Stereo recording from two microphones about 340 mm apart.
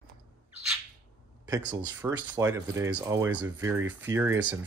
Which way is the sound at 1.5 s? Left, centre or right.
Centre.